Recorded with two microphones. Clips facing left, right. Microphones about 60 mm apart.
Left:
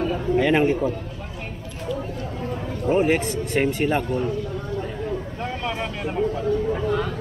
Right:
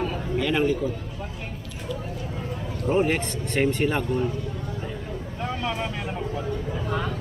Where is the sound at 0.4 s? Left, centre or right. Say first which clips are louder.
Left 4 dB; left.